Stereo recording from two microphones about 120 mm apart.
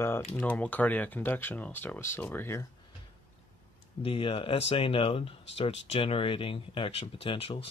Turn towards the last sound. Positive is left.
turn(degrees=55)  # may be behind; listen again after turning